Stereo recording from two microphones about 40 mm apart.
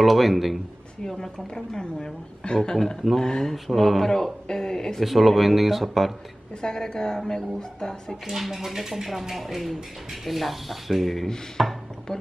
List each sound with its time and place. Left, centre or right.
0.0 s speech: centre
1.0 s speech: centre
3.5 s speech: centre
5.0 s speech: centre
6.6 s speech: centre
8.3 s speech: centre
11.5 s a sound: centre